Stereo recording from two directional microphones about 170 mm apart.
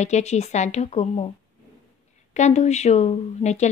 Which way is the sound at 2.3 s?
45° left (ahead or behind).